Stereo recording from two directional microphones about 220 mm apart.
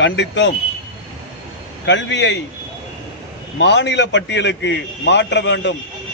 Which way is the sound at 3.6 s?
50° left (ahead or behind).